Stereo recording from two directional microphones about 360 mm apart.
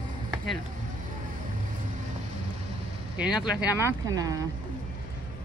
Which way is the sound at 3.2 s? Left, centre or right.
Centre.